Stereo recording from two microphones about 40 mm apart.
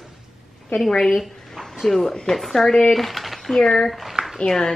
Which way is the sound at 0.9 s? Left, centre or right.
Centre.